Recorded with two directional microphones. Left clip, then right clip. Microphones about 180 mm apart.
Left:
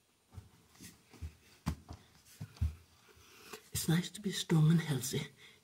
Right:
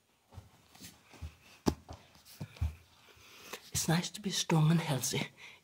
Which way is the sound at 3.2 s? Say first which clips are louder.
Right 4 dB; 40° left (ahead or behind).